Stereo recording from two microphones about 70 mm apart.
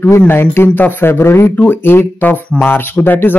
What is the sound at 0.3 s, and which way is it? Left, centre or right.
Speech, left.